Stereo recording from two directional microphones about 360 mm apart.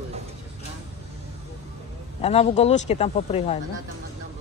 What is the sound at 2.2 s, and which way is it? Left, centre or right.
Speech, centre.